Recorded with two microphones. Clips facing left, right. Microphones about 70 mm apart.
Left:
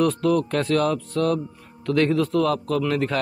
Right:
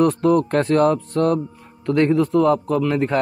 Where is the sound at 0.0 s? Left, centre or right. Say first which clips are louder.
Right 4 dB; right.